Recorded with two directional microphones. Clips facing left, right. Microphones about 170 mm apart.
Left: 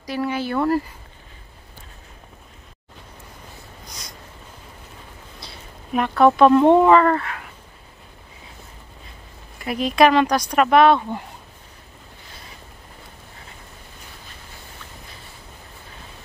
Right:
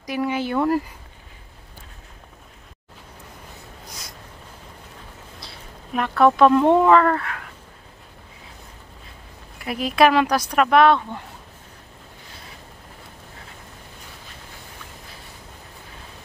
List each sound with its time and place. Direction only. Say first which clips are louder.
0.0 s speech: even; 15° right (ahead or behind)
3.8 s a sound: even; 5° right (ahead or behind)
5.9 s speech: left 1 dB; centre (ahead or behind)
9.6 s speech: left 1 dB; centre (ahead or behind)